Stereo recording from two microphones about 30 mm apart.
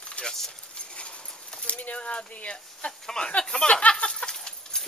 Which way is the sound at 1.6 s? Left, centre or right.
Left.